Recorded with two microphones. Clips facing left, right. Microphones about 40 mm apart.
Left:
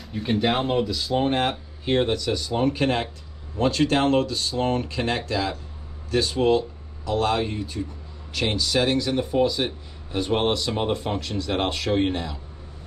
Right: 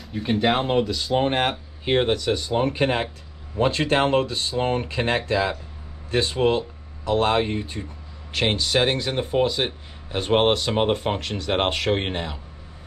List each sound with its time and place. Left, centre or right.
0.0 s speech: centre
0.7 s speech: centre; by 12.4 s right